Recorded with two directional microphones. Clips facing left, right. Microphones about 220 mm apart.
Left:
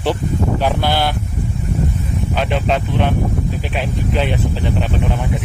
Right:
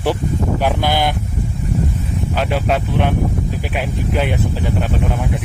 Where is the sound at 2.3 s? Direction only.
5° right (ahead or behind).